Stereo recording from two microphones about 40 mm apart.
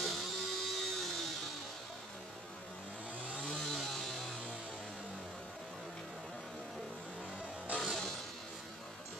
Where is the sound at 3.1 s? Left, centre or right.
Right.